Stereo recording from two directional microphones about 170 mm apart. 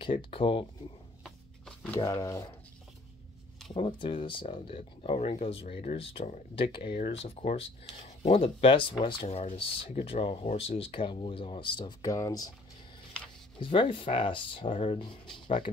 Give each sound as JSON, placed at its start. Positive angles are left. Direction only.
{"t": 0.0, "sound": "speech", "side_deg": 30}
{"t": 2.0, "sound": "speech", "side_deg": 20}
{"t": 3.7, "sound": "speech", "side_deg": 30}
{"t": 13.6, "sound": "speech", "side_deg": 30}